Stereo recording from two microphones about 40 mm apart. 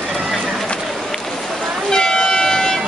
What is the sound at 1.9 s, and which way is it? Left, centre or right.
Air horn, centre.